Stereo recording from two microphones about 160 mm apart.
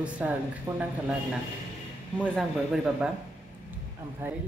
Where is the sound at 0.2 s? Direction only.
10° right (ahead or behind).